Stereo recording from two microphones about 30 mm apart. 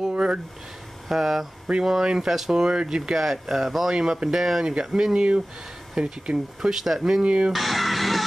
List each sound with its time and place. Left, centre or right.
0.1 s a sound: right
1.0 s speech: centre
2.6 s speech: right
2.9 s speech: centre
6.0 s speech: centre
7.2 s speech: right
7.5 s music: centre